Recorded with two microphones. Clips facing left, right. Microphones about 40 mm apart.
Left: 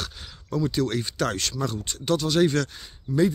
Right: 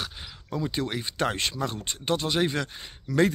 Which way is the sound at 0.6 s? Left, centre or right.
Right.